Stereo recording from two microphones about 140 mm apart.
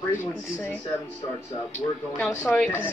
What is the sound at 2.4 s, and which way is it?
Speech, 10° left (ahead or behind).